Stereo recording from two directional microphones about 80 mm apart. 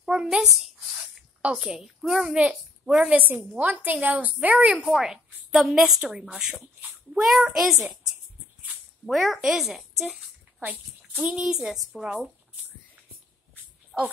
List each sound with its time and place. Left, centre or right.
0.0 s a sound: centre
1.6 s a woman's voice: centre
4.8 s a woman's voice: centre
6.5 s speech: centre
7.2 s a woman's voice: centre
9.0 s a woman's voice: centre
10.6 s a woman's voice: centre
13.9 s speech: centre